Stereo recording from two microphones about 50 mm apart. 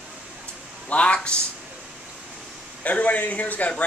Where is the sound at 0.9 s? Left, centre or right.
Left.